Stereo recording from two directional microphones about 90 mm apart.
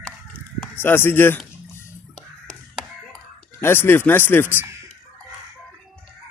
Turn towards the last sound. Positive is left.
turn(degrees=-30)  # may be behind; listen again after turning